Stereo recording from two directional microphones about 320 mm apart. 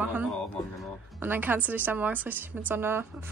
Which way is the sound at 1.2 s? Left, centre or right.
Centre.